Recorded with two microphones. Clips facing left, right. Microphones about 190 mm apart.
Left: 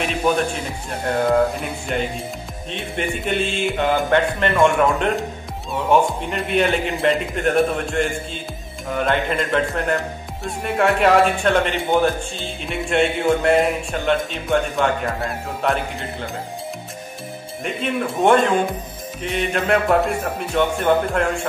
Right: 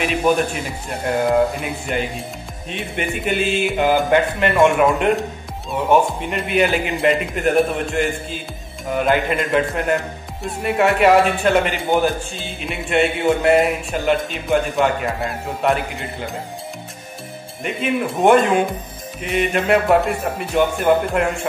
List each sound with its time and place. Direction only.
1.0 s speech: 5° right (ahead or behind)
17.6 s speech: centre (ahead or behind)